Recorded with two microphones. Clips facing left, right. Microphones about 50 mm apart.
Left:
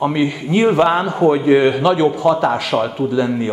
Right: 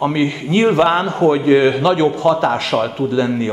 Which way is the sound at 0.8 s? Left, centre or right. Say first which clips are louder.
Even; right.